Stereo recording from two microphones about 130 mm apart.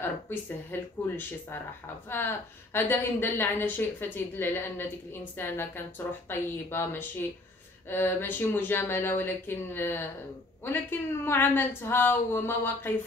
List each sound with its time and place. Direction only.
0.0 s a woman's voice: 15° left (ahead or behind)